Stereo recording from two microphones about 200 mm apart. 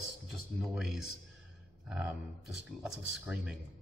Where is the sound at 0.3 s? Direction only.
Centre (ahead or behind).